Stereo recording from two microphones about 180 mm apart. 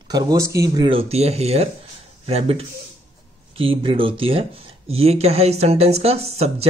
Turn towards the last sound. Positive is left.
turn(degrees=-35)  # may be behind; listen again after turning